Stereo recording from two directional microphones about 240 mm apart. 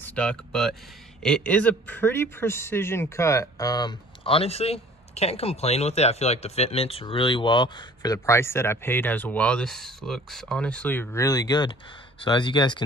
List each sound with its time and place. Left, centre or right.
0.0 s speech: centre